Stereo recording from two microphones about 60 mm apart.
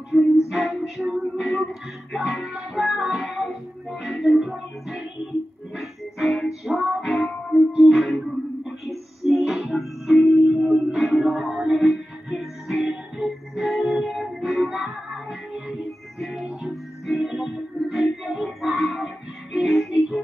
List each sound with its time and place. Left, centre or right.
0.1 s music: centre
1.0 s a sound: centre
1.5 s music: centre
10.6 s music: centre
11.0 s music: centre
14.4 s music: centre
16.2 s music: centre